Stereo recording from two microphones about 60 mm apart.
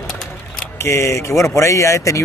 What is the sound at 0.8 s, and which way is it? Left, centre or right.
Speech, left.